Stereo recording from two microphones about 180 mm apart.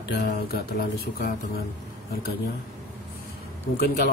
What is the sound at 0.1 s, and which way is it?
Speech, 60° left (ahead or behind).